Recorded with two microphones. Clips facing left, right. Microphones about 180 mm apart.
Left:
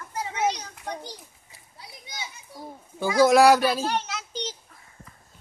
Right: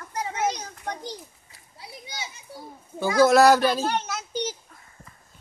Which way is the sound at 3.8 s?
50° right (ahead or behind).